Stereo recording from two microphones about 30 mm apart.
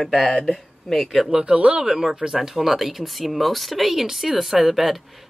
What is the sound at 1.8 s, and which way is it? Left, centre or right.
Speech, centre.